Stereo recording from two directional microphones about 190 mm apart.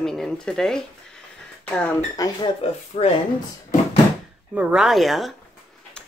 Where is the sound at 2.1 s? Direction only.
20° left (ahead or behind).